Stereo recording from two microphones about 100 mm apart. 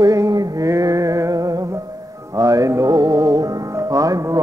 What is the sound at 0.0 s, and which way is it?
Music, 35° right (ahead or behind).